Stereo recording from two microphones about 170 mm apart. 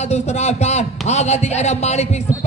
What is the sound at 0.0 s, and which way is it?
A man's voice, 40° left (ahead or behind).